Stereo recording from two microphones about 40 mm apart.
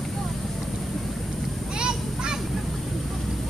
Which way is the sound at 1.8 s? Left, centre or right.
Centre.